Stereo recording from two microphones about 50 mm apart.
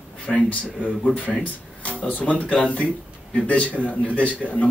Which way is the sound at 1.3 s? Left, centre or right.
Centre.